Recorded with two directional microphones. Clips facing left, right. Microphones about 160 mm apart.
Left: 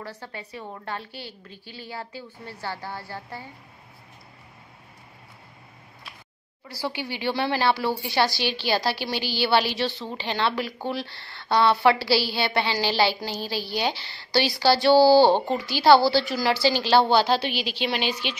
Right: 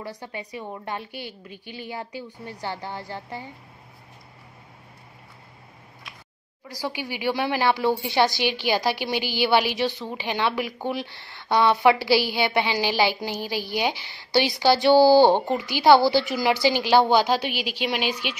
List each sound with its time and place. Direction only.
0.0 s a woman's voice: 15° right (ahead or behind)
6.7 s a woman's voice: 15° right (ahead or behind)